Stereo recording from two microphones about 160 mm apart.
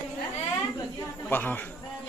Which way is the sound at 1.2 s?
10° left (ahead or behind).